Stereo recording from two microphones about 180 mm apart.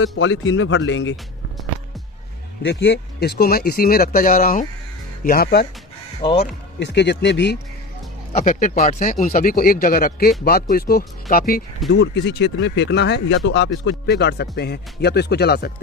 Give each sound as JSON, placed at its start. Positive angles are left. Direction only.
{"t": 0.0, "sound": "speech", "side_deg": 90}
{"t": 2.6, "sound": "speech", "side_deg": 75}
{"t": 6.8, "sound": "speech", "side_deg": 70}
{"t": 8.3, "sound": "speech", "side_deg": 40}
{"t": 11.9, "sound": "speech", "side_deg": 80}